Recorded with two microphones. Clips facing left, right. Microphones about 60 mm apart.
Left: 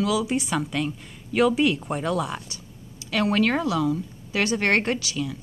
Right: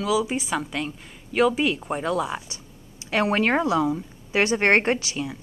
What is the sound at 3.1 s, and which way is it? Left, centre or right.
A woman's voice, right.